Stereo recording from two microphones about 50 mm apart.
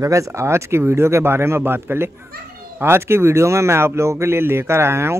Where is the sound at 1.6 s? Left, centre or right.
Right.